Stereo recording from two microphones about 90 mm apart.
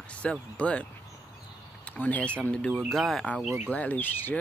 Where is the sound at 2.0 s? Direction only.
15° left (ahead or behind).